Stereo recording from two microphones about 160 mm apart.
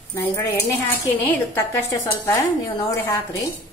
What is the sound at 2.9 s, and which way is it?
Speech, 15° left (ahead or behind).